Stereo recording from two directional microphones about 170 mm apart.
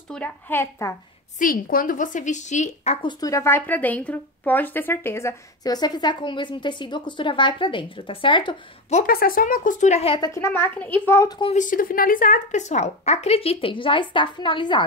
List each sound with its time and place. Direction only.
0.1 s a child's voice: 10° left (ahead or behind)
1.4 s speech: 55° left (ahead or behind); by 3.1 s 40° left (ahead or behind)
3.1 s speech: 20° left (ahead or behind)
8.9 s speech: 60° left (ahead or behind); by 10.3 s 30° left (ahead or behind)
10.3 s a child's voice: 15° left (ahead or behind)
11.5 s speech: 50° left (ahead or behind); by 14.9 s 25° left (ahead or behind)